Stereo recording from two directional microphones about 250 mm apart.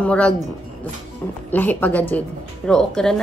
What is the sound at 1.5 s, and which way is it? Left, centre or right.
A woman's voice, centre.